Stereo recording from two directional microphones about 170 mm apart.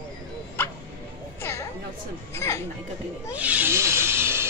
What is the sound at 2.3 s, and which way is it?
Chatter, 15° left (ahead or behind).